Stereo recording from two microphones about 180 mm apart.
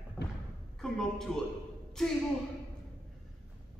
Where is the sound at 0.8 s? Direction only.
5° left (ahead or behind).